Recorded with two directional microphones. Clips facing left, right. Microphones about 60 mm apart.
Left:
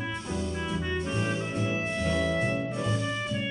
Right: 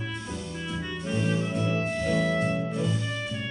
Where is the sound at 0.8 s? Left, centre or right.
Centre.